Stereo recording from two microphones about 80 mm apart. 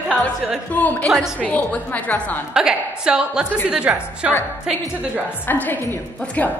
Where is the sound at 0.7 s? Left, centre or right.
Centre.